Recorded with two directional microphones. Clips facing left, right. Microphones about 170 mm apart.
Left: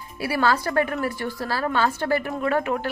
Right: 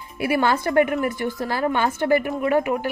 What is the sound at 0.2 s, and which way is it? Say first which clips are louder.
A woman's voice: right 2 dB; 20° right (ahead or behind).